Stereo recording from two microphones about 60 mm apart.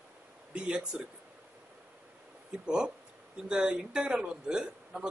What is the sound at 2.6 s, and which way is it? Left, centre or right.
A man's voice, centre.